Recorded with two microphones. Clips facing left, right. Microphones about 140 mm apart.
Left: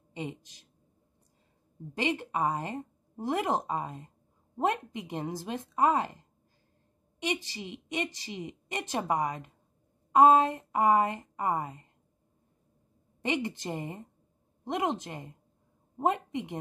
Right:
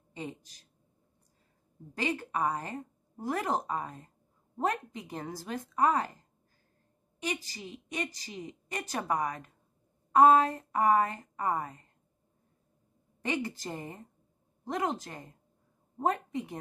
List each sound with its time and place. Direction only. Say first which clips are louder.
0.1 s a woman's voice: left 3 dB; 15° left (ahead or behind)
2.0 s a woman's voice: left 2 dB; 20° left (ahead or behind)
7.2 s a woman's voice: left 3 dB; 20° left (ahead or behind)
13.2 s a woman's voice: left 2 dB; 20° left (ahead or behind)